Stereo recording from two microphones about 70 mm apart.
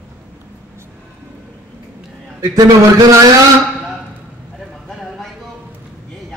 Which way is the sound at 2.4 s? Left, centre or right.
Right.